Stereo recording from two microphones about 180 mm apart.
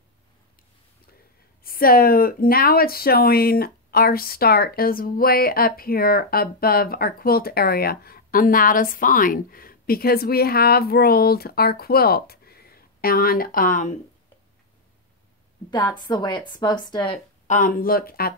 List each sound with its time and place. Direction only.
1.6 s speech: 55° left (ahead or behind)
16.0 s a woman's voice: 25° left (ahead or behind)
17.5 s speech: 50° left (ahead or behind)